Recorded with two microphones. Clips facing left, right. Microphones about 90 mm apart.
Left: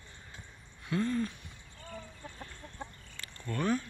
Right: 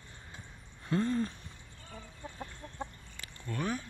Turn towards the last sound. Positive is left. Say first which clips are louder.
# left 4 dB
turn(degrees=-10)  # may be behind; listen again after turning